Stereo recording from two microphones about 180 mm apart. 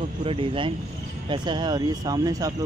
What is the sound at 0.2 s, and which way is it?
Speech, 30° right (ahead or behind).